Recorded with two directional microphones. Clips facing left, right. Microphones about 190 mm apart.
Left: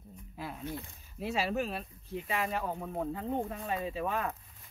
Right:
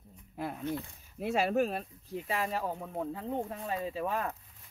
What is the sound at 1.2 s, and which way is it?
Speech, 50° right (ahead or behind).